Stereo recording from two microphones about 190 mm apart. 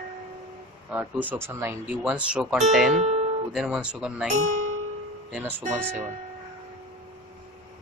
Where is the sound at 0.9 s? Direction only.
10° right (ahead or behind).